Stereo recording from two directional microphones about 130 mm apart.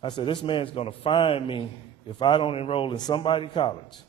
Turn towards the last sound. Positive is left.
turn(degrees=40)  # may be behind; listen again after turning